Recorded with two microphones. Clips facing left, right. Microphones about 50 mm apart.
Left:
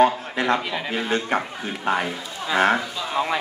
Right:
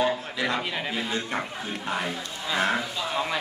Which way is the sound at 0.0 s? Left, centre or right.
Left.